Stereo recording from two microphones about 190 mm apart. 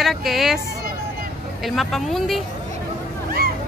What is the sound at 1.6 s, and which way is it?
Speech, centre (ahead or behind).